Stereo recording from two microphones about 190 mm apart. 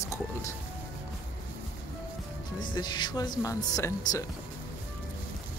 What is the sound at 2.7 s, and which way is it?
Speech, 25° left (ahead or behind).